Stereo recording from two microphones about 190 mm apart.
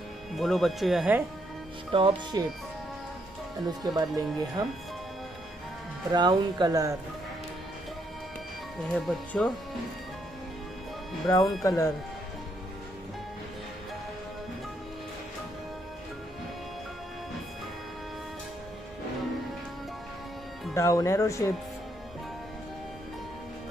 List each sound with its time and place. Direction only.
0.4 s speech: centre (ahead or behind)
1.9 s speech: 25° right (ahead or behind)
3.6 s speech: 20° right (ahead or behind)
6.1 s speech: 20° right (ahead or behind)
8.8 s speech: 5° left (ahead or behind)
11.2 s speech: 20° left (ahead or behind)
20.7 s speech: 15° left (ahead or behind)